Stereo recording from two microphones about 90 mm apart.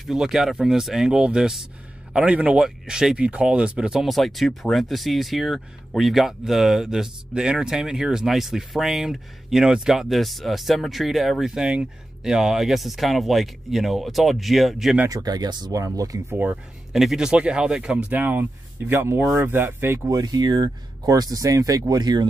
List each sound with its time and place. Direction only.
0.0 s speech: 5° right (ahead or behind)
15.0 s speech: 45° right (ahead or behind)
15.8 s speech: 40° right (ahead or behind)
16.3 s speech: 20° right (ahead or behind)
16.9 s speech: 5° right (ahead or behind)
18.1 s speech: 20° right (ahead or behind)
20.1 s speech: 50° right (ahead or behind)